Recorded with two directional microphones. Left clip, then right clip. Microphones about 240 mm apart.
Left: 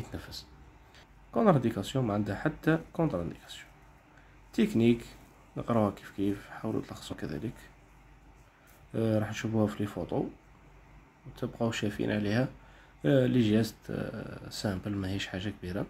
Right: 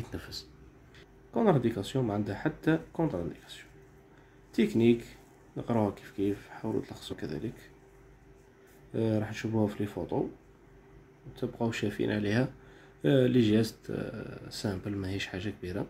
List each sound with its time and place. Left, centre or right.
0.1 s speech: centre
8.9 s speech: centre
11.3 s speech: centre